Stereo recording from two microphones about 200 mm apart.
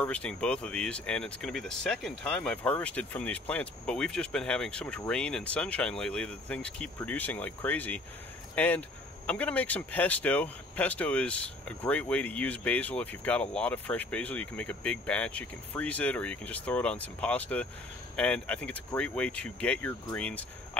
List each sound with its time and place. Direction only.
0.0 s speech: 5° left (ahead or behind)